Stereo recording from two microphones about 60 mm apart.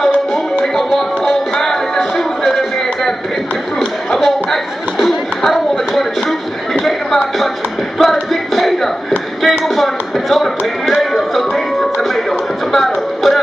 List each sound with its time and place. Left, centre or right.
0.7 s music: centre
4.2 s a sound: centre
10.9 s music: centre